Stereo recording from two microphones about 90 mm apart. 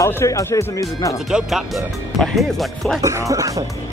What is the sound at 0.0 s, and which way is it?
Speech, 35° left (ahead or behind).